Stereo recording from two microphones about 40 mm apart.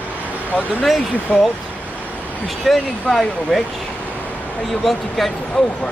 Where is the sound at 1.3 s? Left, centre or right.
Left.